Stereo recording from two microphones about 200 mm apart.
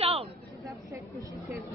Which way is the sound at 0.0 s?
30° right (ahead or behind).